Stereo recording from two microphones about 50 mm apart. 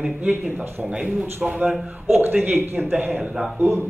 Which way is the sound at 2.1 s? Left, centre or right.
Right.